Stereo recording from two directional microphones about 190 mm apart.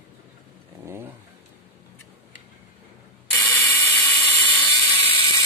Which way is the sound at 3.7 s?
15° left (ahead or behind).